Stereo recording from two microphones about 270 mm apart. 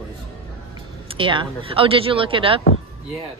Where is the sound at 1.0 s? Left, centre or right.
Centre.